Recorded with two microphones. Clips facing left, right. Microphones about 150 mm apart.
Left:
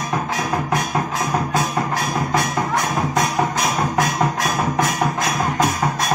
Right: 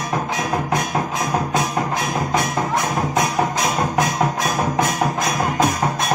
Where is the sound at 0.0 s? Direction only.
15° right (ahead or behind).